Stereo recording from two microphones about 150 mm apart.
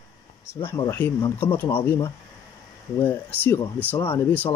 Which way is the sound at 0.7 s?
15° left (ahead or behind).